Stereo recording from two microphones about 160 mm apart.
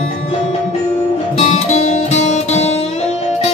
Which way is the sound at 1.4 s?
40° left (ahead or behind).